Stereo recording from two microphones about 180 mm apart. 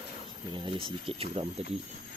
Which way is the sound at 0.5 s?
25° right (ahead or behind).